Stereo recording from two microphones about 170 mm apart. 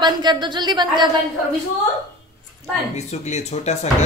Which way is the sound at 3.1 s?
40° left (ahead or behind).